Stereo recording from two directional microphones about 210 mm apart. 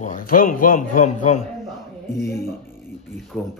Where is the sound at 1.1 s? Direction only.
90° left.